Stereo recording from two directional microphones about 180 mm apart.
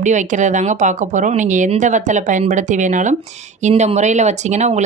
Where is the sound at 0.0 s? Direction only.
45° right (ahead or behind).